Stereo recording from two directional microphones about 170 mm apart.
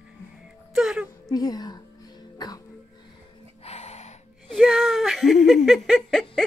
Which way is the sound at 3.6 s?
40° left (ahead or behind).